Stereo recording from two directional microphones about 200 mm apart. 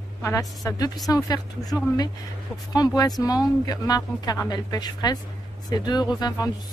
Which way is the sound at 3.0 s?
20° left (ahead or behind).